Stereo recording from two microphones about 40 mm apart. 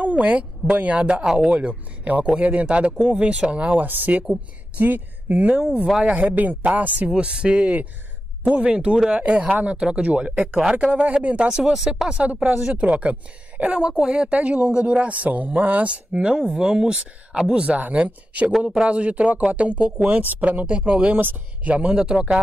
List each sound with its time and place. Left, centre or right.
0.0 s speech: right
3.8 s speech: right
6.0 s speech: right
7.2 s speech: right
10.6 s speech: right
11.0 s speech: right
11.6 s speech: centre
12.2 s speech: right
13.7 s speech: centre; by 15.9 s right
15.9 s speech: right
20.6 s speech: right
21.9 s speech: centre